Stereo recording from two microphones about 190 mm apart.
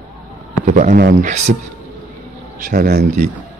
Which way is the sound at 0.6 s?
40° right (ahead or behind).